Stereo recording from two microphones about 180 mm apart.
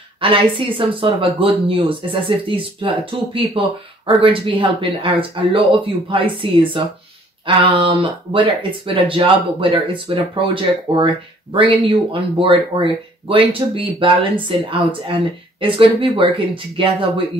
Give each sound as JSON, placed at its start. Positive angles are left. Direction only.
{"t": 0.2, "sound": "speech", "side_deg": -30}